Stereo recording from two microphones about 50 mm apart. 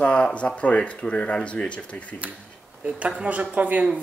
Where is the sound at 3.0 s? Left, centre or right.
Right.